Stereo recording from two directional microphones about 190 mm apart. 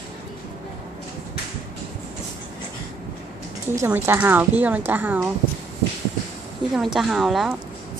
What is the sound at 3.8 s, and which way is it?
A woman's voice, 10° right (ahead or behind).